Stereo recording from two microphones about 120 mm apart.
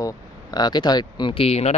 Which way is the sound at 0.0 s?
35° left (ahead or behind).